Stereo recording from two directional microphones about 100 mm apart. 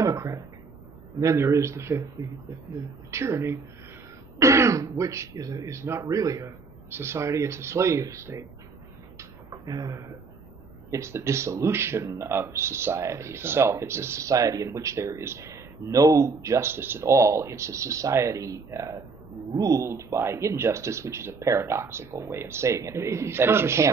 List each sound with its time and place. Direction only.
0.0 s a sound: 35° right (ahead or behind)
1.2 s speech: 30° right (ahead or behind)
3.1 s speech: 30° right (ahead or behind)
9.5 s speech: 40° right (ahead or behind)